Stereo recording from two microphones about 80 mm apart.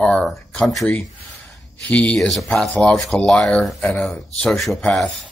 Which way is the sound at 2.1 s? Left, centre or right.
Centre.